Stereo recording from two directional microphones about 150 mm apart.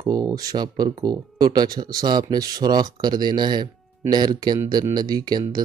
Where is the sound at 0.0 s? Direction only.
25° right (ahead or behind).